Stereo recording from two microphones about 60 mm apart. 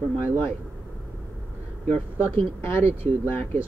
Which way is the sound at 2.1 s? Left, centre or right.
Left.